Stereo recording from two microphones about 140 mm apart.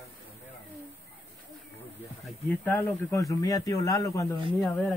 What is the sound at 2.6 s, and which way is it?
Speech, 15° left (ahead or behind).